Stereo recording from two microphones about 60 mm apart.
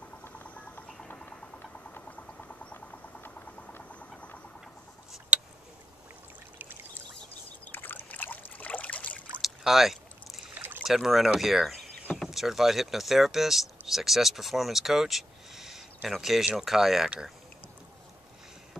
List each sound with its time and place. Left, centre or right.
0.3 s a sound: left
2.0 s vehicle: left
3.3 s frog: left
7.7 s trickle: left
9.4 s rowboat: centre
10.8 s speech: centre